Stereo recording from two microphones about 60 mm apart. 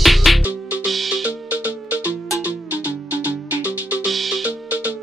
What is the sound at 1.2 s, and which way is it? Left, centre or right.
Music, right.